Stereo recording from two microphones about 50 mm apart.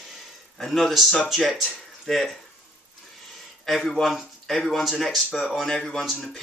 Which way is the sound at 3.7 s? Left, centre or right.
Centre.